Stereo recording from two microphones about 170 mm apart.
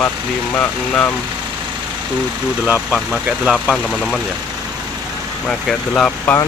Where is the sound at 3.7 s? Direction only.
5° left (ahead or behind).